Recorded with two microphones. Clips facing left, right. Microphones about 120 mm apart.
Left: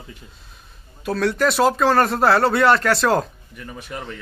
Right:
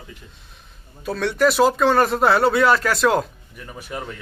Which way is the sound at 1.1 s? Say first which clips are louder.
Even; centre (ahead or behind).